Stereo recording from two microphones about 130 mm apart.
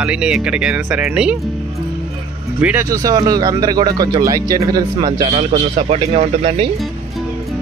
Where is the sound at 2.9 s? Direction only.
30° right (ahead or behind).